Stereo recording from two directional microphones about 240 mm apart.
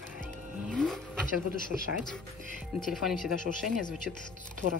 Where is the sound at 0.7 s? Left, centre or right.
Centre.